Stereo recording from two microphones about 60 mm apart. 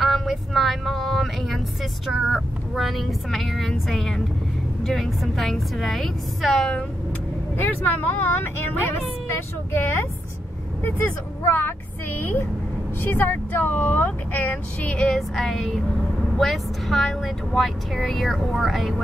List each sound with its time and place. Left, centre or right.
0.0 s a sound: centre
2.2 s speech: centre
7.5 s a woman's voice: left
15.1 s speech: centre